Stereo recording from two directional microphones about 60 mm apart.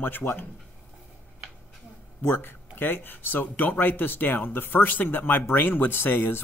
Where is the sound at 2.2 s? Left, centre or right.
Left.